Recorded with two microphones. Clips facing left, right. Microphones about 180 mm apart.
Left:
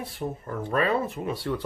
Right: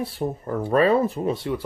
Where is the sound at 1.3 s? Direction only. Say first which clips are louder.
Right 4 dB; 20° right (ahead or behind).